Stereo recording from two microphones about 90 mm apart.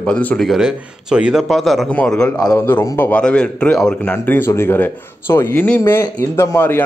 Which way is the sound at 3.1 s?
15° left (ahead or behind).